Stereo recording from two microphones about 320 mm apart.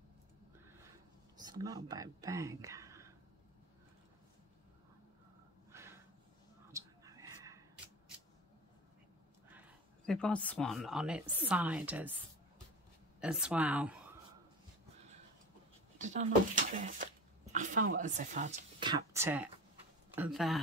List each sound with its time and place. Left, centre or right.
1.4 s speech: centre
5.7 s snort: centre
6.7 s a sound: centre
10.0 s speech: centre
13.2 s speech: centre
16.0 s speech: right; by 20.6 s centre